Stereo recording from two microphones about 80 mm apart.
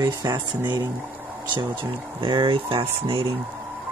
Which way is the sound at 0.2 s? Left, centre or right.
Right.